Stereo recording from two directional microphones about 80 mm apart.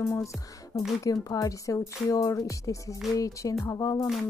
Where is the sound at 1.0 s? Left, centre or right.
Left.